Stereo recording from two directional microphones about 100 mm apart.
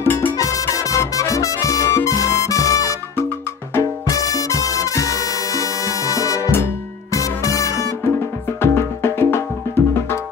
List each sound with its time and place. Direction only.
0.0 s music: 20° left (ahead or behind)
0.4 s music: 35° left (ahead or behind)